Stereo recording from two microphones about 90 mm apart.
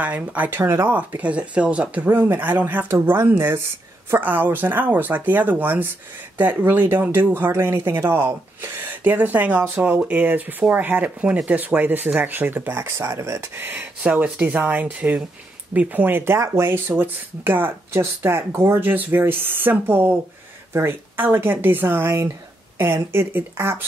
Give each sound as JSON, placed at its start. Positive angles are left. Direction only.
{"t": 0.0, "sound": "speech", "side_deg": -15}
{"t": 0.7, "sound": "speech", "side_deg": -30}
{"t": 0.9, "sound": "speech", "side_deg": -15}